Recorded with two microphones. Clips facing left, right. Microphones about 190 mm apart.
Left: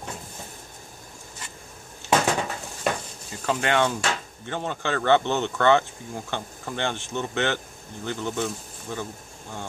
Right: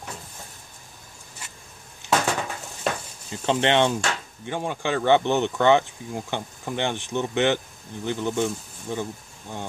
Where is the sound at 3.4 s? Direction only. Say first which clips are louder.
Right 3 dB; 25° right (ahead or behind).